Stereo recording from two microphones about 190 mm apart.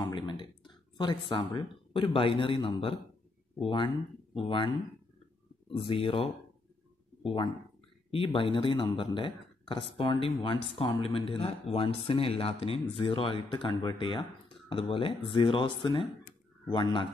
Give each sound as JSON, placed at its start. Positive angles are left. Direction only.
{"t": 0.1, "sound": "a man's voice", "side_deg": 25}
{"t": 5.7, "sound": "a man's voice", "side_deg": 30}
{"t": 8.1, "sound": "a man's voice", "side_deg": 30}